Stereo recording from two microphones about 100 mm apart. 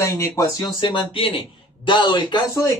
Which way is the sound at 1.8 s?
50° left (ahead or behind).